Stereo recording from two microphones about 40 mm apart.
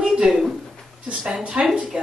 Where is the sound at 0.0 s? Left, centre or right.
Centre.